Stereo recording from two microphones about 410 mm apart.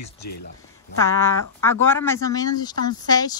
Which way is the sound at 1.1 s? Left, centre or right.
Centre.